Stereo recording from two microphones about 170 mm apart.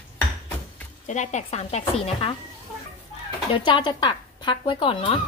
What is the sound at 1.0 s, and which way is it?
Speech, 45° left (ahead or behind).